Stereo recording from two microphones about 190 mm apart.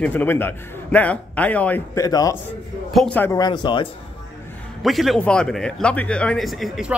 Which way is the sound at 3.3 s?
25° left (ahead or behind).